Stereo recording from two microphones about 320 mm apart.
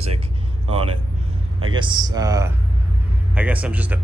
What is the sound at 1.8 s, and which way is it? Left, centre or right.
Speech, centre.